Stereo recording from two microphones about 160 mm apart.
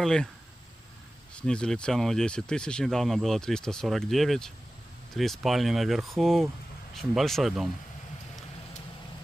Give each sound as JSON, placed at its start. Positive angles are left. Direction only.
{"t": 0.0, "sound": "speech", "side_deg": 5}
{"t": 1.3, "sound": "speech", "side_deg": 5}